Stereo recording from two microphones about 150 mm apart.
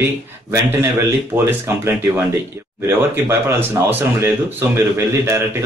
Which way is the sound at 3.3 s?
15° right (ahead or behind).